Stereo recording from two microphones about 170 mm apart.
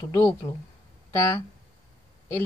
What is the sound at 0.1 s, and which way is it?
Speech, 15° left (ahead or behind).